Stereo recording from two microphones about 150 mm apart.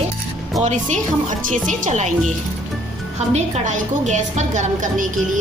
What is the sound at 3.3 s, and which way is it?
A woman's voice, 50° right (ahead or behind).